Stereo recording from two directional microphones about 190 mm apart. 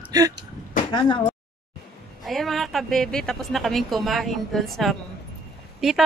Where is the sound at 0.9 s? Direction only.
25° left (ahead or behind).